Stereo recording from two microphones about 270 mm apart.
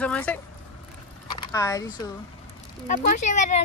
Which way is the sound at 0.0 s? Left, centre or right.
Centre.